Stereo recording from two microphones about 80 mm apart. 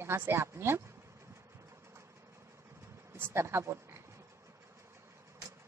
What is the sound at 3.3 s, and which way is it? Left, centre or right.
Speech, right.